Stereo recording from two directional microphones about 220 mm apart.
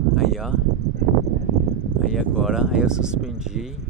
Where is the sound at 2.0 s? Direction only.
Centre (ahead or behind).